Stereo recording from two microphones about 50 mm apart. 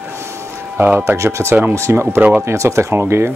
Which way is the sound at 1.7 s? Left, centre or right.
Right.